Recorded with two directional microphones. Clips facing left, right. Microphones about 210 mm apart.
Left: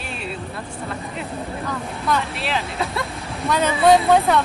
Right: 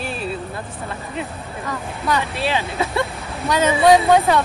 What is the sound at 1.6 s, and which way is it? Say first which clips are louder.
Speech: right 3 dB; centre (ahead or behind).